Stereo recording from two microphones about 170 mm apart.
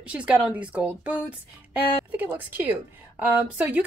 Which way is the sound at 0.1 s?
5° right (ahead or behind).